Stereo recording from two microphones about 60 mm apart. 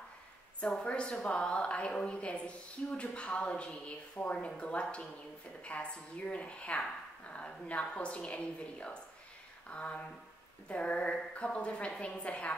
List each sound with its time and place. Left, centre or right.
0.6 s a woman's voice: centre